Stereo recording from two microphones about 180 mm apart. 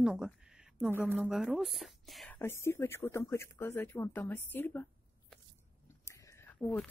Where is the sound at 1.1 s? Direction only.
Centre (ahead or behind).